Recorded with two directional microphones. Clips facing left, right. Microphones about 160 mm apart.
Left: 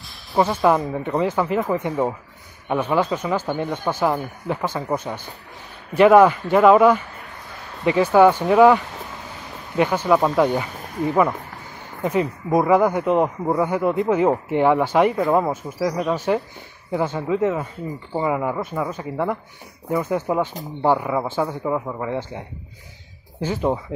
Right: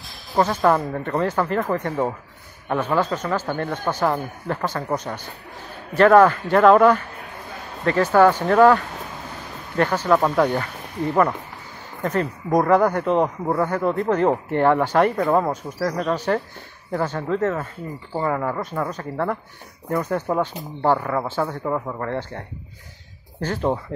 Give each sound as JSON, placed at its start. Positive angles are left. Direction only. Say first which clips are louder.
{"t": 0.4, "sound": "speech", "louder": "left 1 dB", "side_deg": 10}
{"t": 23.4, "sound": "speech", "louder": "left 1 dB", "side_deg": 10}